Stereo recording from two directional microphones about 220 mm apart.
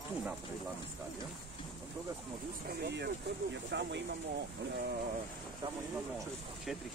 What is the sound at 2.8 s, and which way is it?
Speech, 50° right (ahead or behind).